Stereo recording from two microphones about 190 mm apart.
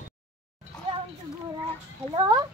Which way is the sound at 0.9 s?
30° right (ahead or behind).